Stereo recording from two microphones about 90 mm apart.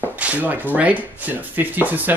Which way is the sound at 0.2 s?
15° right (ahead or behind).